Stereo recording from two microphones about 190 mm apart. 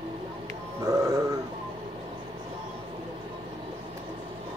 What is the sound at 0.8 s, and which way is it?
Music, 15° right (ahead or behind).